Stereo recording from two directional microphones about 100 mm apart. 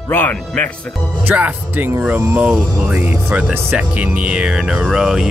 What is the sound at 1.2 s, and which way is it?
Speech, 20° right (ahead or behind).